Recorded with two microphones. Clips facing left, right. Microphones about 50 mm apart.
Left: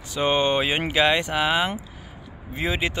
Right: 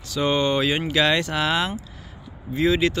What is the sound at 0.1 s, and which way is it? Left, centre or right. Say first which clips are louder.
Speech: even; left.